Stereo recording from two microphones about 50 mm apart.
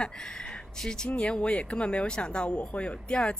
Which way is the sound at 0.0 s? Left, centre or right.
Centre.